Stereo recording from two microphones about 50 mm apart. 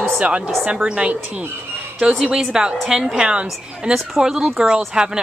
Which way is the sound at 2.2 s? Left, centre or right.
Centre.